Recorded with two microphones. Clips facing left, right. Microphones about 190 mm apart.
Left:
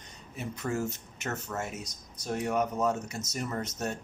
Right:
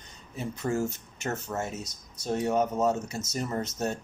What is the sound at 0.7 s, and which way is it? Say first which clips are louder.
Speech: right 3 dB; 30° right (ahead or behind).